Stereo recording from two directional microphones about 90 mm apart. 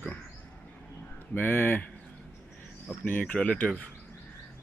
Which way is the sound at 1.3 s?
20° left (ahead or behind).